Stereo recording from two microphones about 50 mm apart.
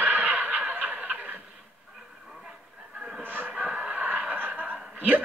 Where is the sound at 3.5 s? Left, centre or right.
Right.